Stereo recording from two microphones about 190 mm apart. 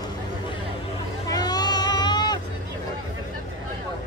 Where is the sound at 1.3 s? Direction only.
20° left (ahead or behind).